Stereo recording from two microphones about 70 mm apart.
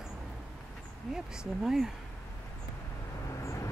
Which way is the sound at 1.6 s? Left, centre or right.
Centre.